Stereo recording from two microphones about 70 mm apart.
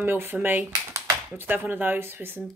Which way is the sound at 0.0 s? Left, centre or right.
Right.